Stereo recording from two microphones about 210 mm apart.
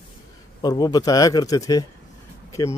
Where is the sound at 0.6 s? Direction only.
20° left (ahead or behind).